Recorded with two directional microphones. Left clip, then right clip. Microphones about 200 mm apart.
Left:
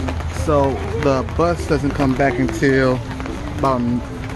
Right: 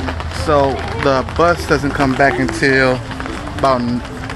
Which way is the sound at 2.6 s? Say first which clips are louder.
Right 3 dB; 20° left (ahead or behind).